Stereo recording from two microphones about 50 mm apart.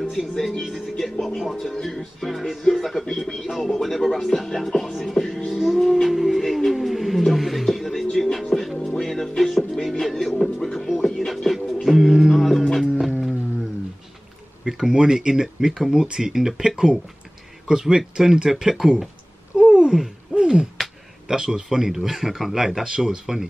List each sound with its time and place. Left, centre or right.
0.4 s speech: centre
0.7 s speech: centre
0.9 s speech: centre
14.6 s speech: centre
19.5 s babbling: centre
20.3 s owl: centre
21.3 s speech: centre